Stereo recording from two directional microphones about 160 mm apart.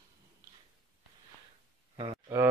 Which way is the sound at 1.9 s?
25° right (ahead or behind).